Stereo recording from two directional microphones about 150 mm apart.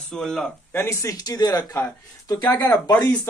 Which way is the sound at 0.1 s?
5° left (ahead or behind).